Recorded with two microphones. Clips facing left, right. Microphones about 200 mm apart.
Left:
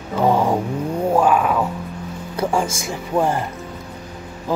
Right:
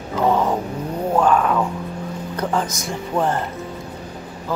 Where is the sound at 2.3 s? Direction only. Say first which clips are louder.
Left 3 dB; 10° left (ahead or behind).